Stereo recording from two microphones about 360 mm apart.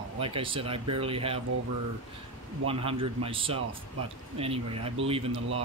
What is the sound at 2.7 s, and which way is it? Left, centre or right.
Speech, centre.